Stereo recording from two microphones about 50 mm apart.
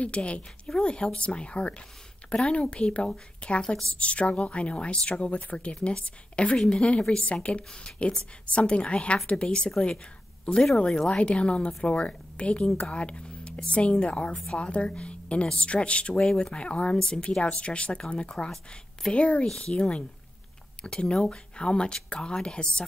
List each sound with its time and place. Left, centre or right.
0.0 s a woman's voice: left
10.4 s a woman's voice: centre
12.9 s a sound: left
13.7 s a woman's voice: left
14.3 s speech: centre
14.6 s a woman's voice: left